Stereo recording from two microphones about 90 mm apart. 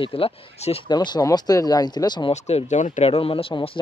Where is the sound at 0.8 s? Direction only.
50° left (ahead or behind).